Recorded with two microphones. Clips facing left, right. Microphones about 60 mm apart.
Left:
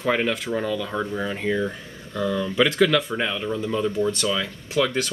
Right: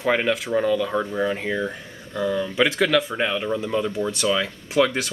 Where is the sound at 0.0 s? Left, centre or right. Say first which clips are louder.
Right 1 dB; centre.